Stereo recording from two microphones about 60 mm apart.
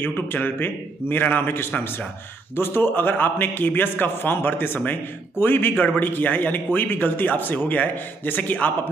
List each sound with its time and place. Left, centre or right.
0.0 s a man's voice: left